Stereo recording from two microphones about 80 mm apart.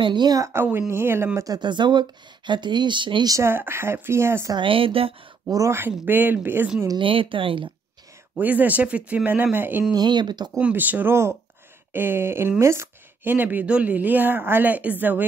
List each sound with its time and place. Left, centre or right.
0.0 s speech: right
0.4 s speech: right
1.4 s speech: right
3.4 s speech: right
5.7 s speech: right
7.0 s speech: right
8.4 s speech: right
9.9 s speech: right
10.6 s speech: right